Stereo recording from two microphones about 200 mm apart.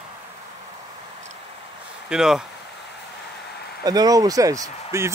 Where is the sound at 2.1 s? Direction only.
5° right (ahead or behind).